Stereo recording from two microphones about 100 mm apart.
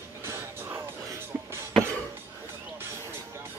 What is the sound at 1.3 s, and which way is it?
Beatboxing, 10° right (ahead or behind).